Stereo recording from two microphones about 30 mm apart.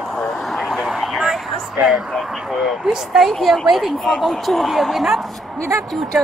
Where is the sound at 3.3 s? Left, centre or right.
Centre.